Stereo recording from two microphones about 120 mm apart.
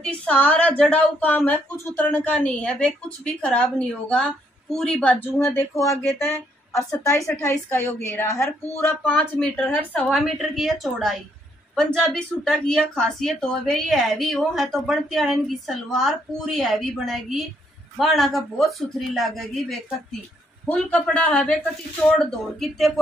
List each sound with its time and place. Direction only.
0.0 s a woman's voice: 10° left (ahead or behind)
5.4 s a woman's voice: 20° left (ahead or behind); by 20.2 s centre (ahead or behind)
20.6 s a woman's voice: 10° left (ahead or behind)